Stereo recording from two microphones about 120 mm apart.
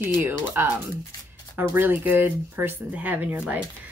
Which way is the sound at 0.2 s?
15° right (ahead or behind).